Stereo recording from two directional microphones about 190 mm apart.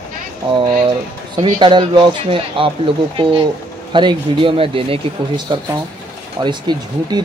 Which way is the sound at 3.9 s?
25° right (ahead or behind).